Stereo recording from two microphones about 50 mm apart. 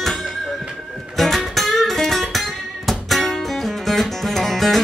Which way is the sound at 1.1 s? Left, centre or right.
Centre.